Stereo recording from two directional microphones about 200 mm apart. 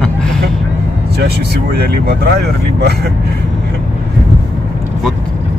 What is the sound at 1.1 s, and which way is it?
Speech, 55° right (ahead or behind).